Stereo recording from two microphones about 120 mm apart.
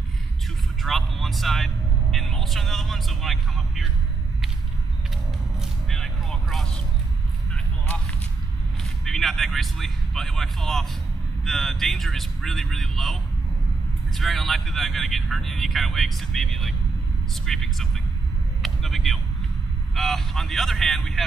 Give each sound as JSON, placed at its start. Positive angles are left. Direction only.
{"t": 0.8, "sound": "a man's voice", "side_deg": 0}
{"t": 5.6, "sound": "vehicle", "side_deg": 5}
{"t": 7.5, "sound": "a sound", "side_deg": 10}
{"t": 9.0, "sound": "speech", "side_deg": 0}
{"t": 18.6, "sound": "vehicle", "side_deg": 0}
{"t": 20.0, "sound": "speech", "side_deg": 0}